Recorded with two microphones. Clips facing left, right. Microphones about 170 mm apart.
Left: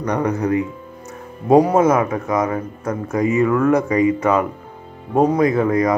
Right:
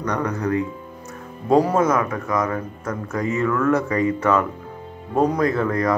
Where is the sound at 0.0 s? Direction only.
20° left (ahead or behind).